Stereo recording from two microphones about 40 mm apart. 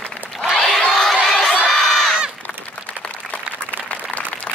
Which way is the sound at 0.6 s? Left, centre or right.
Centre.